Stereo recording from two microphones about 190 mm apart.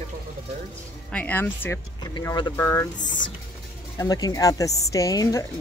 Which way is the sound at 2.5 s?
15° left (ahead or behind).